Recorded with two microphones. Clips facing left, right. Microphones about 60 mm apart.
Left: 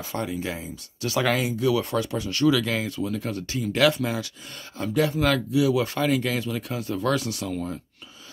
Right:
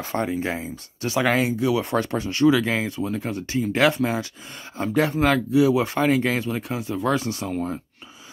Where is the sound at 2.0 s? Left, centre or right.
Right.